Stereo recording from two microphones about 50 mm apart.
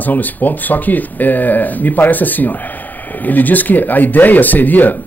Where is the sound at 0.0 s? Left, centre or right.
Left.